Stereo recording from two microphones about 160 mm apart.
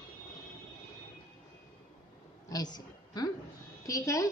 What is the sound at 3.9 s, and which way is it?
Speech, 20° left (ahead or behind).